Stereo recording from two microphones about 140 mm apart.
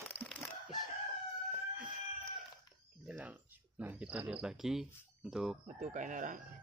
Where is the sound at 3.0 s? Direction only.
10° right (ahead or behind).